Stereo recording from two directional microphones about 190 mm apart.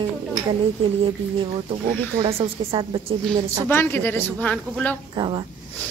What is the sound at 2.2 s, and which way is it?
Speech, 25° right (ahead or behind).